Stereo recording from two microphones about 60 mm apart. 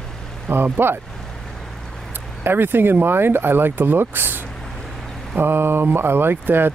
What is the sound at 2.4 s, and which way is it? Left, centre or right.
Speech, right.